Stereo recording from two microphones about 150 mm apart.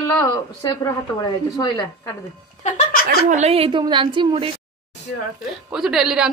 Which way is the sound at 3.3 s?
45° right (ahead or behind).